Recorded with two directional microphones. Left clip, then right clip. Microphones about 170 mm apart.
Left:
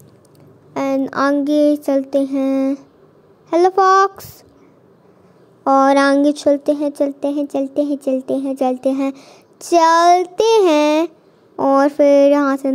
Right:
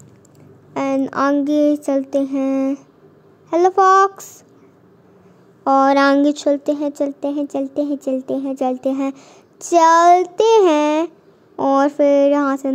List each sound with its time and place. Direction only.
0.7 s speech: 10° left (ahead or behind)
5.6 s speech: 15° left (ahead or behind)